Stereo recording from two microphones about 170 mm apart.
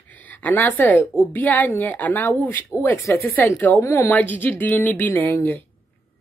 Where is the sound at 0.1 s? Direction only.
10° left (ahead or behind).